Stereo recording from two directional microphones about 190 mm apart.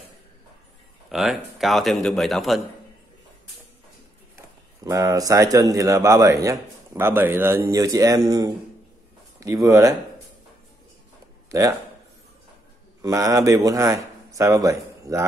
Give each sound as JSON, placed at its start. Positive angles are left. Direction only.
{"t": 1.1, "sound": "speech", "side_deg": 0}
{"t": 4.8, "sound": "a man's voice", "side_deg": -15}
{"t": 13.0, "sound": "a man's voice", "side_deg": -15}